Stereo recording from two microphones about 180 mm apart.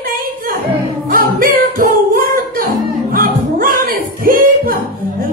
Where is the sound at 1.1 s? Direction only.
50° right (ahead or behind).